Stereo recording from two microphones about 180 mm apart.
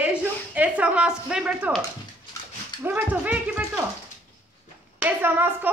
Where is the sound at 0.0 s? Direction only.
10° right (ahead or behind).